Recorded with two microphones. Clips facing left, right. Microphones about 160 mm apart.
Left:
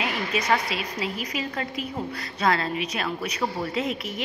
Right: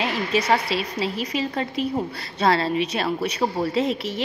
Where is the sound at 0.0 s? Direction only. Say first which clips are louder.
Right 4 dB; 30° right (ahead or behind).